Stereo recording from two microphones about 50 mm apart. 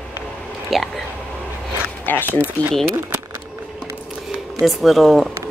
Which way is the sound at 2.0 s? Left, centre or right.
Left.